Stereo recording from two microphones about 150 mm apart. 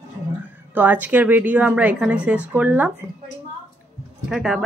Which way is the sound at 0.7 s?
10° right (ahead or behind).